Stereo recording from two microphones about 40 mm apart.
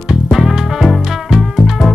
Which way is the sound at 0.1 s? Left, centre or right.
Centre.